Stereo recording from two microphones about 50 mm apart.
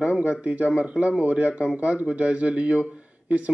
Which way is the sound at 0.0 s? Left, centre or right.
Right.